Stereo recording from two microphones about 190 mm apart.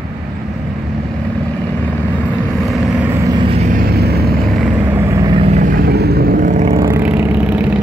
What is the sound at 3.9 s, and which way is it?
Vehicle, 55° right (ahead or behind).